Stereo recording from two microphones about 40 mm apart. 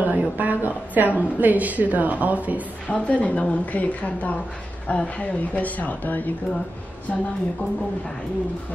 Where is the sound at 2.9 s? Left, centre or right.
Left.